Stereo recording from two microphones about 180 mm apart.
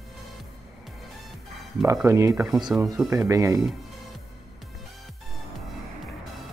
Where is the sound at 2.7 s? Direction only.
5° right (ahead or behind).